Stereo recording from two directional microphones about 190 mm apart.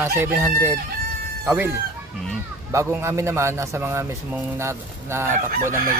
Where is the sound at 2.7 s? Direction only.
15° right (ahead or behind).